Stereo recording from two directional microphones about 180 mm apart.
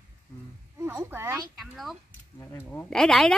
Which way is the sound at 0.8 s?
15° right (ahead or behind).